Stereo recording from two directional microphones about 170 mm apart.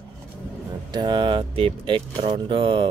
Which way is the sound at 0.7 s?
25° right (ahead or behind).